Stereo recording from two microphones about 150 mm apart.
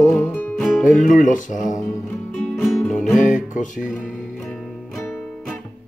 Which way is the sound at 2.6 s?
Centre (ahead or behind).